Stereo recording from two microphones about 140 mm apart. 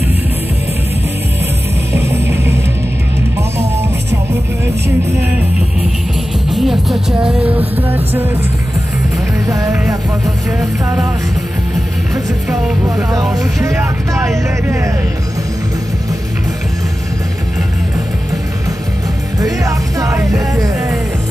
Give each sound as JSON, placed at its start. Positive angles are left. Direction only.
{"t": 1.9, "sound": "music", "side_deg": -20}
{"t": 6.5, "sound": "music", "side_deg": 0}
{"t": 9.5, "sound": "music", "side_deg": -25}
{"t": 12.8, "sound": "music", "side_deg": -25}
{"t": 19.4, "sound": "music", "side_deg": -25}